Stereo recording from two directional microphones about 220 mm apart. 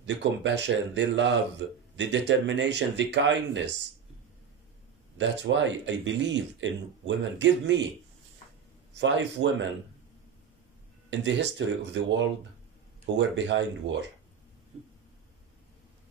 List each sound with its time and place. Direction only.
0.0 s speech: 55° right (ahead or behind)
5.1 s speech: 55° right (ahead or behind)
8.9 s speech: 55° right (ahead or behind)
11.1 s speech: 55° right (ahead or behind)